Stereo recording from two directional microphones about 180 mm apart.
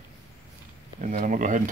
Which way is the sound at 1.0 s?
45° right (ahead or behind).